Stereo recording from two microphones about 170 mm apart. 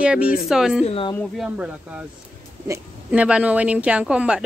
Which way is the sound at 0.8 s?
35° left (ahead or behind).